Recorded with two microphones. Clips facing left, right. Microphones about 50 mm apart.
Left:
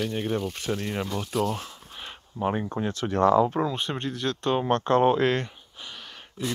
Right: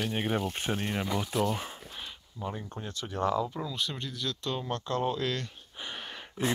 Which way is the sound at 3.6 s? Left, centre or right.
Left.